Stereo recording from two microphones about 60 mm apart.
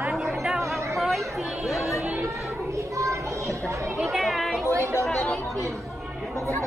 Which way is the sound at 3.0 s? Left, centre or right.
Right.